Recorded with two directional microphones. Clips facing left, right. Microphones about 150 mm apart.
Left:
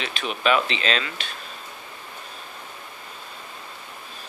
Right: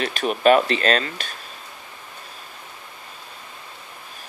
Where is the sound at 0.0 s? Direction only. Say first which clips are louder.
Right 7 dB; 45° right (ahead or behind).